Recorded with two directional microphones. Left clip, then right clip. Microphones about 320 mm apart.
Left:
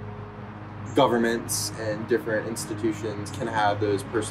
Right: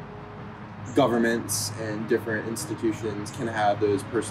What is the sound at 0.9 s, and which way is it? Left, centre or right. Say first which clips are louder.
Speech: left 1 dB; centre.